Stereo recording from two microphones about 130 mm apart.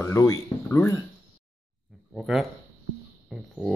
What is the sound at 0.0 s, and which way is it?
Speech, 25° left (ahead or behind).